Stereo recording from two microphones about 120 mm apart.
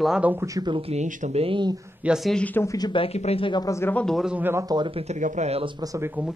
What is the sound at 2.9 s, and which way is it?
Speech, 55° left (ahead or behind).